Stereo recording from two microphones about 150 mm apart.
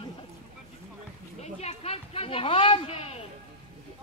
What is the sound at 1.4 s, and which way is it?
Speech, 45° left (ahead or behind).